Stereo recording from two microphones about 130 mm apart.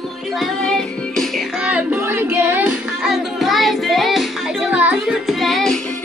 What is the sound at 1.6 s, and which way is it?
Child singing, 10° right (ahead or behind).